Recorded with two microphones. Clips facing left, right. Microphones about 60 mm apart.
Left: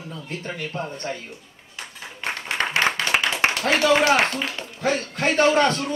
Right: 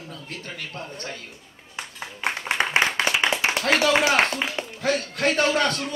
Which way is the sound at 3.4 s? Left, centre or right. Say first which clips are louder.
Left 2 dB; left.